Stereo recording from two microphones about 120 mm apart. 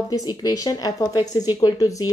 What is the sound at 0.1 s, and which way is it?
A woman's voice, 30° left (ahead or behind).